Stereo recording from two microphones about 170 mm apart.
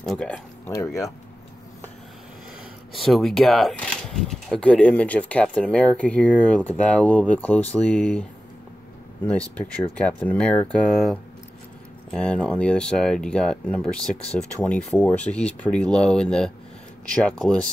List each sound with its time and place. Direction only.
0.0 s speech: centre (ahead or behind)
2.9 s speech: centre (ahead or behind)
9.9 s speech: 10° left (ahead or behind)
14.1 s speech: 35° left (ahead or behind)
14.6 s speech: 10° left (ahead or behind)